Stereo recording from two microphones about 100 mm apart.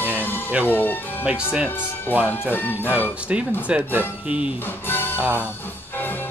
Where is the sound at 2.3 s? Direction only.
20° left (ahead or behind).